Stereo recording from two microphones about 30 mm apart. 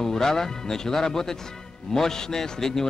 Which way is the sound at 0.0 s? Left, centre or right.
Centre.